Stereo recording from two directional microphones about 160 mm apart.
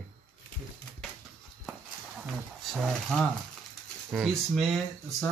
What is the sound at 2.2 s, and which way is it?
Speech, 5° right (ahead or behind).